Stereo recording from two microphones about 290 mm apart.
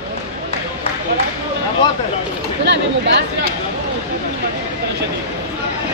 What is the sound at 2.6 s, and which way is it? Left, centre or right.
Speech, right.